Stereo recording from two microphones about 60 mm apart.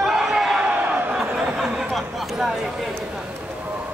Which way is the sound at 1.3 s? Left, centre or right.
Centre.